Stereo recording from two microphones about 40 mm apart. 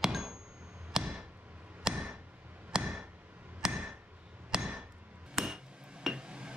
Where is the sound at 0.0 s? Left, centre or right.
Centre.